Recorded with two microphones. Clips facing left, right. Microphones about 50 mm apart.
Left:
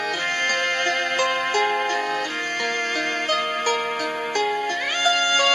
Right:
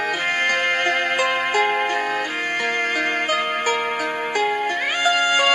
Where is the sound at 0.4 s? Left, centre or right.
Centre.